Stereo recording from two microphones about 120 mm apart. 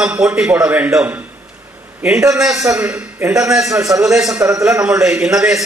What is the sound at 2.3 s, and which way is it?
Speech, 5° right (ahead or behind).